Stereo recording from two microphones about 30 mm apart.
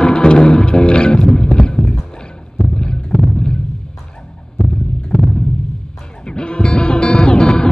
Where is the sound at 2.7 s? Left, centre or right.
Left.